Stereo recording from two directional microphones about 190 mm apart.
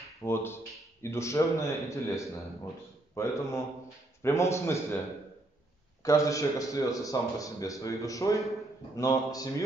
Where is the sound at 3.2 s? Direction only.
15° left (ahead or behind).